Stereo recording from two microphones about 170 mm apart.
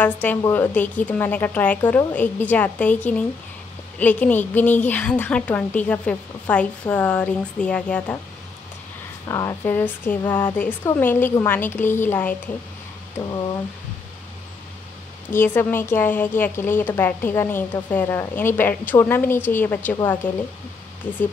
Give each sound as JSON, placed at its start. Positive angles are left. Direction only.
{"t": 0.0, "sound": "a woman's voice", "side_deg": 10}
{"t": 9.3, "sound": "a woman's voice", "side_deg": 20}
{"t": 13.2, "sound": "speech", "side_deg": 25}
{"t": 15.3, "sound": "a woman's voice", "side_deg": 10}